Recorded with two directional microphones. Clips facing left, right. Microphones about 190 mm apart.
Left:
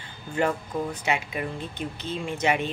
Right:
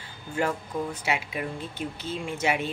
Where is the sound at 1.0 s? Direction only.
5° right (ahead or behind).